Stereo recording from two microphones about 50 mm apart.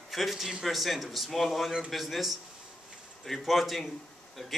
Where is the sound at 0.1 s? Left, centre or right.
Centre.